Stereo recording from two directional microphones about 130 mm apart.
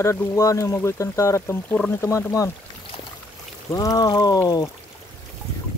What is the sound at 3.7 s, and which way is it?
Speech, 30° left (ahead or behind).